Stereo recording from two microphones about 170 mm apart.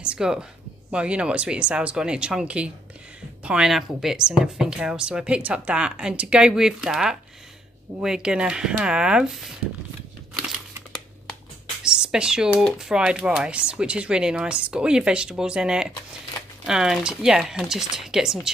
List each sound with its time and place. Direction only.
0.0 s a sound: 5° right (ahead or behind)
0.9 s speech: 5° right (ahead or behind)
11.8 s speech: 5° right (ahead or behind)